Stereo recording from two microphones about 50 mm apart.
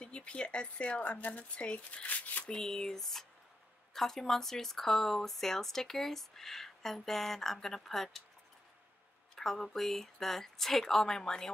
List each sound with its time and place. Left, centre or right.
0.0 s speech: left
2.4 s speech: centre
9.3 s speech: centre